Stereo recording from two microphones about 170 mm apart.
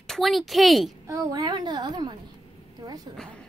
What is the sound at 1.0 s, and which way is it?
A woman's voice, 20° right (ahead or behind).